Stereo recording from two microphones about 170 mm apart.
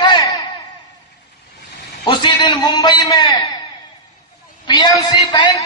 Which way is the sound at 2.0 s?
25° left (ahead or behind).